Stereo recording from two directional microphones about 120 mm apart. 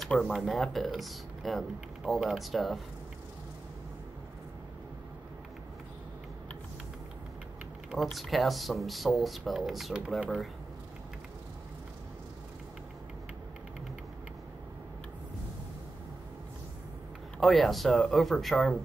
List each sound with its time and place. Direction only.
0.0 s speech: 5° left (ahead or behind)
7.9 s speech: centre (ahead or behind)
17.4 s speech: centre (ahead or behind)